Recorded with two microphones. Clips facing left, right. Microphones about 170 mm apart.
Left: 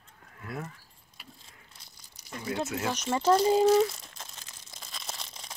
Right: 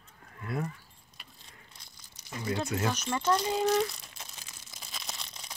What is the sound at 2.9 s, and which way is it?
Speech, 25° left (ahead or behind).